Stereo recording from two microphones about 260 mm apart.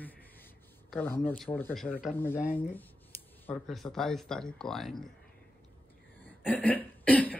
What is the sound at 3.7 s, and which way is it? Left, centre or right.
Speech, centre.